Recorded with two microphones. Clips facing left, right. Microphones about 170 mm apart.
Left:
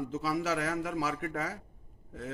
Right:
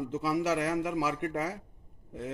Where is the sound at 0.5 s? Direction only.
15° right (ahead or behind).